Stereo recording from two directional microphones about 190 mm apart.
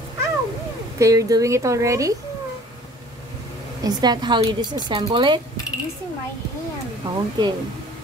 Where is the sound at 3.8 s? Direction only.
20° right (ahead or behind).